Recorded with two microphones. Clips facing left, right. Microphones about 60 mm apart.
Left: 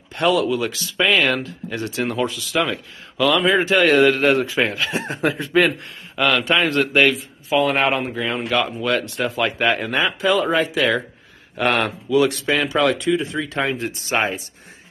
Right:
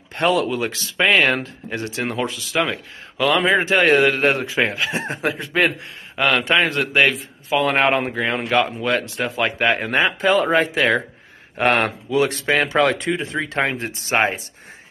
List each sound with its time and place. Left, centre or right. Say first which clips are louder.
0.1 s a man's voice: left 1 dB; right
5.2 s speech: left 7 dB; centre
6.1 s a man's voice: even; right
6.7 s speech: left 3 dB; centre
7.6 s speech: right 4 dB; right
8.8 s a man's voice: even; right
9.8 s speech: right 2 dB; right